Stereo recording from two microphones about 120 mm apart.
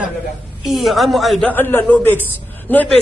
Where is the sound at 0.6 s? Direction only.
Centre (ahead or behind).